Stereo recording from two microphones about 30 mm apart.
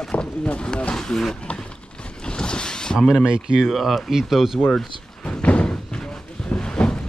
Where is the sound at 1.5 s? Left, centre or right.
Left.